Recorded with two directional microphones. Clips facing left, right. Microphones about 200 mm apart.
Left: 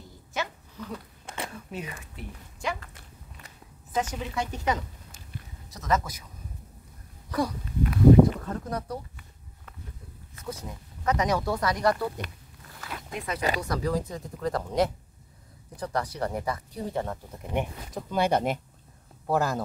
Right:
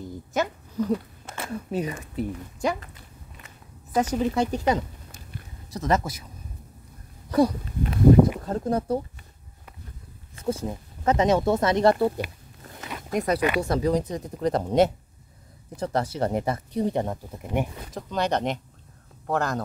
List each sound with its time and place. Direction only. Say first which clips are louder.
0.3 s a sound: right 7 dB; 45° right (ahead or behind)
1.5 s speech: right 9 dB; 35° right (ahead or behind)
3.9 s speech: right 7 dB; 40° right (ahead or behind)
7.2 s wheeze: right 8 dB; 25° right (ahead or behind)
8.5 s speech: right 8 dB; 30° right (ahead or behind)
10.3 s speech: right 10 dB; 30° right (ahead or behind)
13.1 s speech: right 10 dB; 40° right (ahead or behind)
13.6 s speech: right 6 dB; 25° right (ahead or behind)
17.4 s speech: right 2 dB; 5° right (ahead or behind)
18.1 s speech: even; 10° left (ahead or behind)